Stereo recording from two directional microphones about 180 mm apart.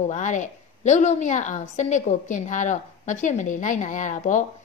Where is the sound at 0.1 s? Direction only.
45° left (ahead or behind).